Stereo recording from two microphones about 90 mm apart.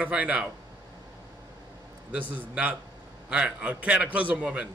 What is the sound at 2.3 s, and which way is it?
A man's voice, 15° right (ahead or behind).